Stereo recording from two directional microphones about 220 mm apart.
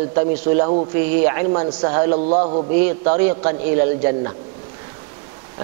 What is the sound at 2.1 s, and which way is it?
Speech, 35° right (ahead or behind).